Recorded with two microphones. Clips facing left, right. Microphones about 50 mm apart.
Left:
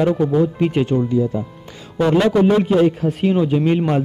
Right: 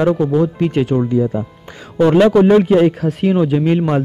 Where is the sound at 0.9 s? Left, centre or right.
Right.